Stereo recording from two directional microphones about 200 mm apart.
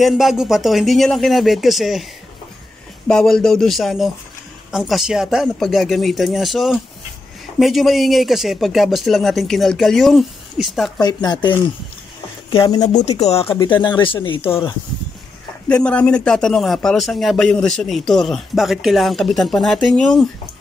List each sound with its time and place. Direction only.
0.0 s a man's voice: centre (ahead or behind)
3.1 s a man's voice: 5° left (ahead or behind)
11.0 s speech: 20° left (ahead or behind)
15.7 s a man's voice: 5° left (ahead or behind)